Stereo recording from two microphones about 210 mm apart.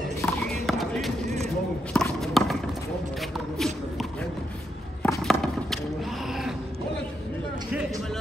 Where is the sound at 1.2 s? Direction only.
30° right (ahead or behind).